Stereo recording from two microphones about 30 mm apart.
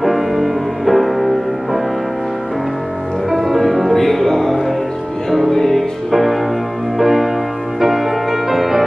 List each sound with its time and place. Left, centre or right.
0.0 s music: centre
3.3 s music: centre
6.1 s music: centre